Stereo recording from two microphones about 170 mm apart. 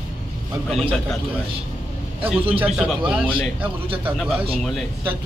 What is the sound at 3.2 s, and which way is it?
Speech, 10° left (ahead or behind).